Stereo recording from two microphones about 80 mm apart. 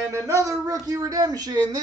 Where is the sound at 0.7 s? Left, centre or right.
Right.